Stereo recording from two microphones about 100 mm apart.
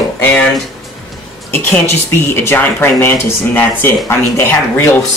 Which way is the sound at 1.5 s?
20° left (ahead or behind).